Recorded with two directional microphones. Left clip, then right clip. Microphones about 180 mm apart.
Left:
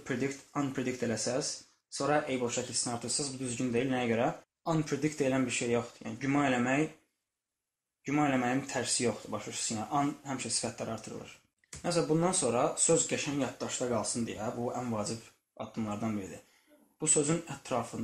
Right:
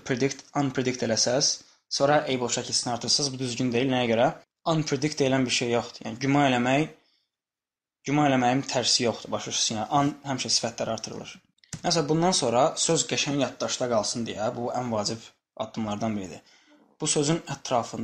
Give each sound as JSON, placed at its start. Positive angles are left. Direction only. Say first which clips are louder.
{"t": 0.0, "sound": "speech", "louder": "right 8 dB", "side_deg": -40}
{"t": 8.0, "sound": "speech", "louder": "right 7 dB", "side_deg": -40}
{"t": 17.2, "sound": "speech", "louder": "right 5 dB", "side_deg": -40}